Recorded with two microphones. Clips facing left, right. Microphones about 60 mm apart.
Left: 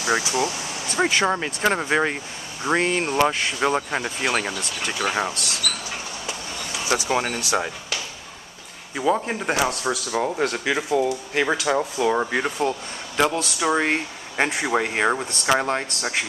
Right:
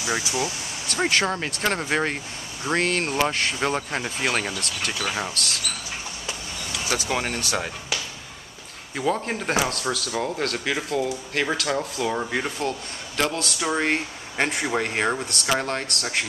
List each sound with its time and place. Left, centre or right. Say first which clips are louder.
0.0 s speech: left 4 dB; left
1.0 s speech: left 2 dB; centre
4.5 s speech: left 1 dB; centre
6.9 s speech: left 4 dB; centre
8.9 s speech: left 3 dB; centre